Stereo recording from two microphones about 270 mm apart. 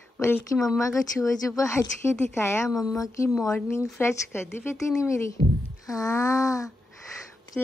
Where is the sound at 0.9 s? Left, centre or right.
Centre.